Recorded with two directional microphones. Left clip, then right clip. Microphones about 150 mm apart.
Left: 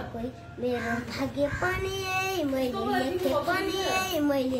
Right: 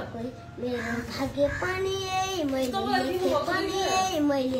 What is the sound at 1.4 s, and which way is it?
A child's voice, 10° left (ahead or behind).